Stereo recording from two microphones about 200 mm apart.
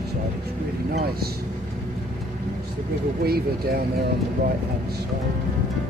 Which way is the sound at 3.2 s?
50° right (ahead or behind).